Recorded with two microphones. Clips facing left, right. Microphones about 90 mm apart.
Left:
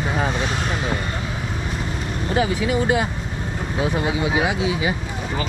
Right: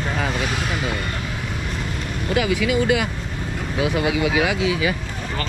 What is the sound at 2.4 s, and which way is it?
Speech, 90° right.